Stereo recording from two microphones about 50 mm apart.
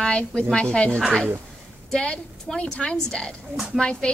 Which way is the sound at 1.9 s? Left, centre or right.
Centre.